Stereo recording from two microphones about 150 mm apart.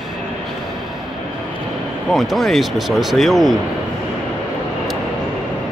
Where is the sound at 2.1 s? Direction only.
Centre (ahead or behind).